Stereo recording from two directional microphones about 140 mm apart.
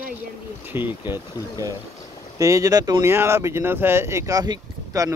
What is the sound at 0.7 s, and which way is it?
Speech, 15° right (ahead or behind).